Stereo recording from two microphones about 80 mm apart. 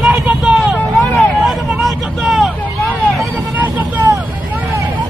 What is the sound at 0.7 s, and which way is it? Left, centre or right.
Vehicle, centre.